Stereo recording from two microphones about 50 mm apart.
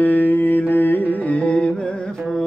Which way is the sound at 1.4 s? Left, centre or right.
Left.